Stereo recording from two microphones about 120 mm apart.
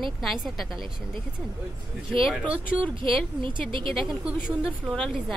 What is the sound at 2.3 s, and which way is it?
Speech, 10° right (ahead or behind).